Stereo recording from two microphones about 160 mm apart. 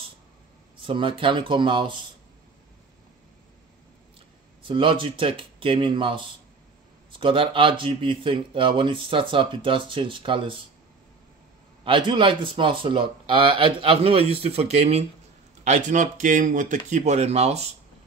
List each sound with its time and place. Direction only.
0.7 s speech: 30° right (ahead or behind)
4.6 s speech: 30° right (ahead or behind)
11.8 s speech: 30° right (ahead or behind)